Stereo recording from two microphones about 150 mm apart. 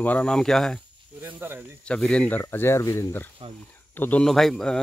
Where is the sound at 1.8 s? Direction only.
5° left (ahead or behind).